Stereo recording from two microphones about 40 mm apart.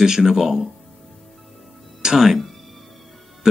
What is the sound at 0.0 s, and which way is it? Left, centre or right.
Speech, centre.